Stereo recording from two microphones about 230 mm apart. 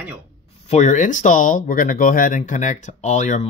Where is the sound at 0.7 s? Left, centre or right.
Left.